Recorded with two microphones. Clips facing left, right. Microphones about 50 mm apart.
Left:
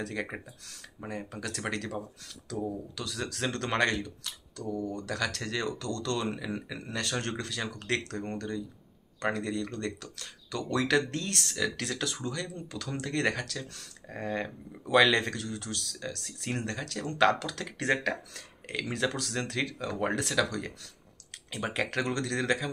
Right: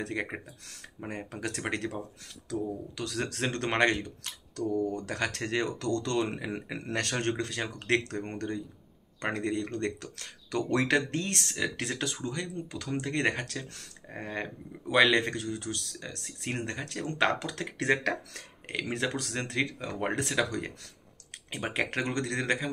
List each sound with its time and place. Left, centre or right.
0.0 s speech: right
3.0 s speech: right
4.7 s speech: right
6.8 s speech: right
7.2 s speech: right
14.1 s speech: right